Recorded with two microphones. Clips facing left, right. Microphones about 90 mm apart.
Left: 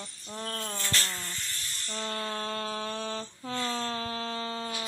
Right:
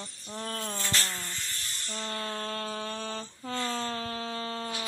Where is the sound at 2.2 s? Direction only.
5° left (ahead or behind).